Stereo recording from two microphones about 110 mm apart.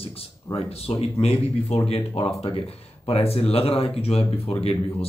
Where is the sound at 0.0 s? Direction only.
60° left (ahead or behind).